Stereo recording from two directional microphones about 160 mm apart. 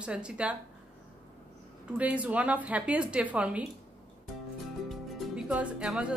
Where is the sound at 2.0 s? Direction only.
10° right (ahead or behind).